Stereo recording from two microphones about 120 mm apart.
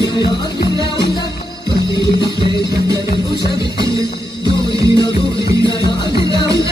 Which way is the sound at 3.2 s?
40° left (ahead or behind).